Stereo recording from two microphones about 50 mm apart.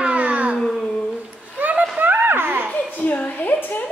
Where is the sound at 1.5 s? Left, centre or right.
Right.